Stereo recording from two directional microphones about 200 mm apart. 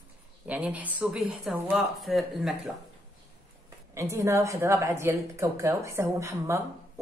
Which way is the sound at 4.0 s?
15° right (ahead or behind).